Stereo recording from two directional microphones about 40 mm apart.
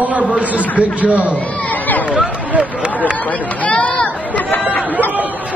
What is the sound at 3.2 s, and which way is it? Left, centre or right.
Speech, left.